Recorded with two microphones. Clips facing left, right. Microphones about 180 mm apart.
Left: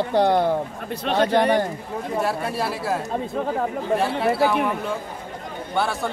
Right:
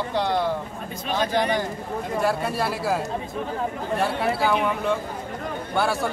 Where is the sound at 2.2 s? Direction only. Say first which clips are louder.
Right 3 dB; centre (ahead or behind).